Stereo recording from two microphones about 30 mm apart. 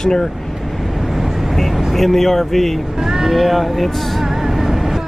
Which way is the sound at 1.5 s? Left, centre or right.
Centre.